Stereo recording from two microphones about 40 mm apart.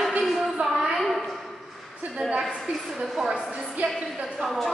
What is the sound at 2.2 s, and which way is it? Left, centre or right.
A woman's voice, centre.